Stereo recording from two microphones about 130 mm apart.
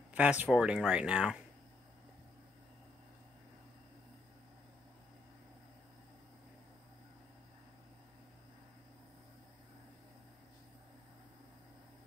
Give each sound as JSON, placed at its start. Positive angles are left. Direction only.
{"t": 0.1, "sound": "speech", "side_deg": -10}